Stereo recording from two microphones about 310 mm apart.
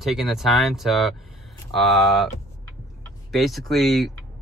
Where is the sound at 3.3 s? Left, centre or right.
Centre.